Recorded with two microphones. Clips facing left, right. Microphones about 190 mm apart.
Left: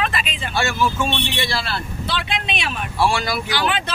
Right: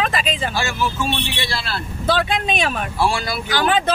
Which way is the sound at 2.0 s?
45° right (ahead or behind).